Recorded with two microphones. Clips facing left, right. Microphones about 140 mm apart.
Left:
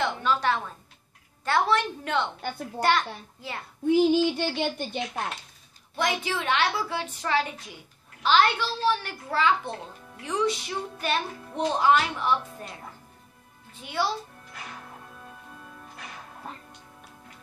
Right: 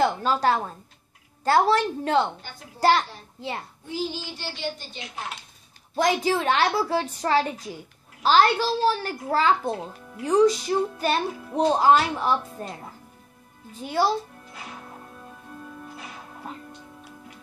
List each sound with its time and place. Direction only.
0.0 s music: 40° right (ahead or behind)
2.8 s a child's voice: 30° right (ahead or behind)
3.8 s speech: 60° left (ahead or behind)
5.9 s music: 40° right (ahead or behind)
13.7 s music: 40° right (ahead or behind)